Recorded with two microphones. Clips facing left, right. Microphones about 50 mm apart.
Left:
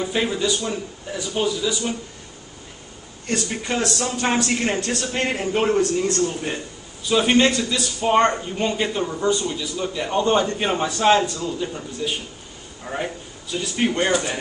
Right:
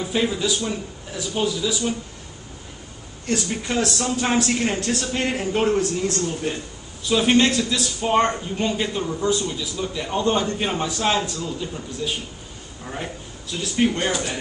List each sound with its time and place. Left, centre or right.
0.0 s a man's voice: centre
3.4 s a man's voice: centre
13.5 s speech: centre